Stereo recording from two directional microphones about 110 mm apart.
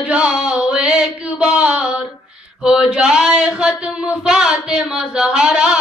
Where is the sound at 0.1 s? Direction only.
10° right (ahead or behind).